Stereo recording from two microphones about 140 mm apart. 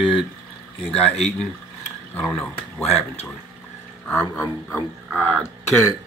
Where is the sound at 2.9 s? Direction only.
50° left (ahead or behind).